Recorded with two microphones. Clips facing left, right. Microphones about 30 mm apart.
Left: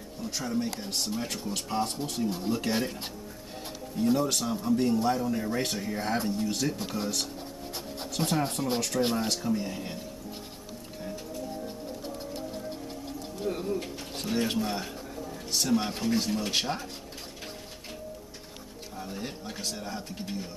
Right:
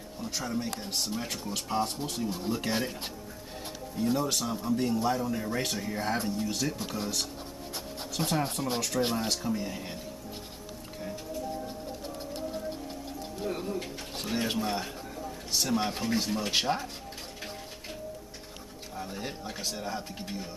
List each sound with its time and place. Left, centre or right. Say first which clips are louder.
0.2 s speech: left 2 dB; centre
3.9 s speech: left 3 dB; centre
13.4 s speech: left 2 dB; centre
18.9 s speech: even; centre